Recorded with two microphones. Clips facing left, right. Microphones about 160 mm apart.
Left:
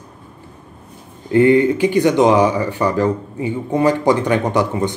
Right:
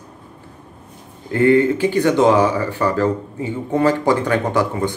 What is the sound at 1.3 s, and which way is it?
Speech, 20° left (ahead or behind).